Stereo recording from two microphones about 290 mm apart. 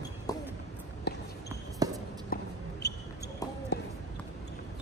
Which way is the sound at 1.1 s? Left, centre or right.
Left.